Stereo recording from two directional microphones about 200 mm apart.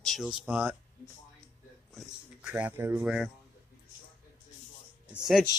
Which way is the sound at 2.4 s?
10° right (ahead or behind).